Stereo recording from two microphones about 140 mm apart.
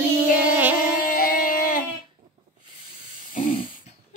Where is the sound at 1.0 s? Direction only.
85° left.